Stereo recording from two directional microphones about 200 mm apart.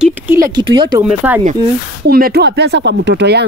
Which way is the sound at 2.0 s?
50° right (ahead or behind).